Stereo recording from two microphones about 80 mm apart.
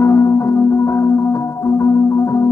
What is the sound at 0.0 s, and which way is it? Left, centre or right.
Music, left.